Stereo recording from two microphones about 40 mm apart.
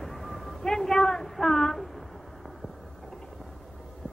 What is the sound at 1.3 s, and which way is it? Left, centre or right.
Female singing, centre.